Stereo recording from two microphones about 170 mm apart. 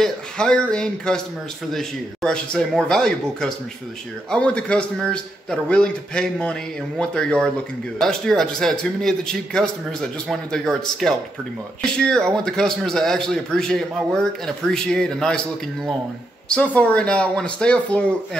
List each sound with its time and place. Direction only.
0.0 s a man's voice: 5° left (ahead or behind)